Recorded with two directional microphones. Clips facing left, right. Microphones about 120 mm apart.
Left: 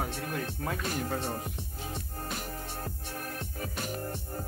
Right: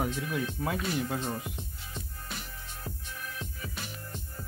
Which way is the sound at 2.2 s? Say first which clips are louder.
Left 5 dB; 45° left (ahead or behind).